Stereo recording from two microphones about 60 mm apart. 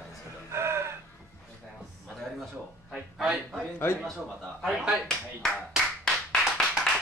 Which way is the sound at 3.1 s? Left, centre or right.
Centre.